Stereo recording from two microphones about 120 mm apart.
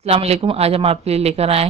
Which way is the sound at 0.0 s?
60° right (ahead or behind).